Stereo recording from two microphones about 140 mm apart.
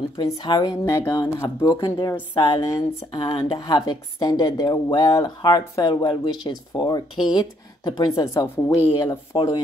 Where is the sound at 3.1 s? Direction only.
40° left (ahead or behind).